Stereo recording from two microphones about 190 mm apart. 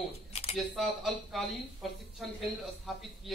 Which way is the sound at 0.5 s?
Centre (ahead or behind).